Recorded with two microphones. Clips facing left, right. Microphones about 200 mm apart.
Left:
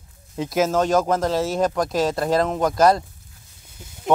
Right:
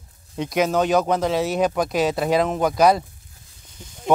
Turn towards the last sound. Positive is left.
turn(degrees=0)  # may be behind; listen again after turning